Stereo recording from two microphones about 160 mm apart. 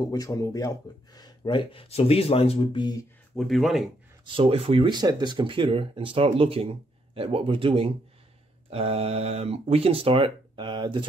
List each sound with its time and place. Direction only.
0.0 s speech: 20° left (ahead or behind)
3.3 s speech: centre (ahead or behind)
4.3 s speech: 35° right (ahead or behind)